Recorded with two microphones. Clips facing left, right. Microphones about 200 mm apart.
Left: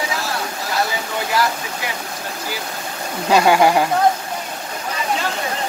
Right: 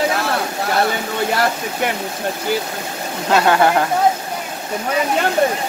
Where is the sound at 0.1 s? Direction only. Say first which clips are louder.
Right 5 dB; 60° right (ahead or behind).